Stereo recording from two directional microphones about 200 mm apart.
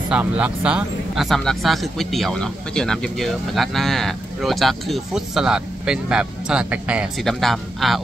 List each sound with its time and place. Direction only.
0.1 s speech: 5° right (ahead or behind)